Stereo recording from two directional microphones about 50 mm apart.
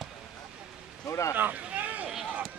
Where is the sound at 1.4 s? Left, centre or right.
Right.